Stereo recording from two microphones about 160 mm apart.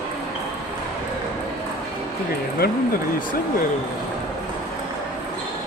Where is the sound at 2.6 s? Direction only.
75° left (ahead or behind).